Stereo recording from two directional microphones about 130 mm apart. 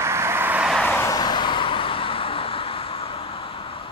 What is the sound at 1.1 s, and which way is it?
Vehicle, 35° left (ahead or behind).